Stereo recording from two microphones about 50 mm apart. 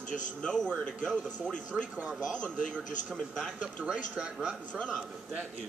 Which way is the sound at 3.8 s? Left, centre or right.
Right.